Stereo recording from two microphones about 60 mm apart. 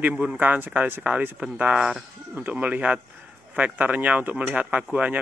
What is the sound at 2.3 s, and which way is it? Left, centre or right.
Speech, right.